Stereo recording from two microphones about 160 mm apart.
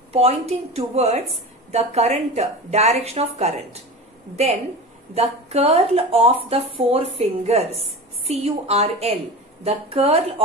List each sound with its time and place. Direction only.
0.1 s a woman's voice: 40° right (ahead or behind)
5.1 s speech: 40° right (ahead or behind)